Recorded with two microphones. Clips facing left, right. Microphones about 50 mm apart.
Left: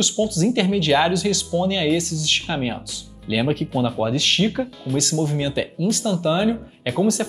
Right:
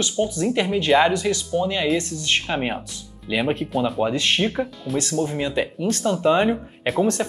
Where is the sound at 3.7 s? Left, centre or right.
Centre.